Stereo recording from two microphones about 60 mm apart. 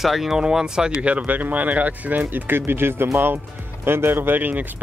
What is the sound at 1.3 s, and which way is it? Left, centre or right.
Speech, right.